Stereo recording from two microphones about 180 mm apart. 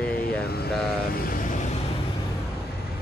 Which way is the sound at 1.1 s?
50° left (ahead or behind).